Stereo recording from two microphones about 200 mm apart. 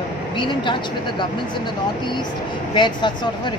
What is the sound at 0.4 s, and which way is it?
Speech, 25° left (ahead or behind).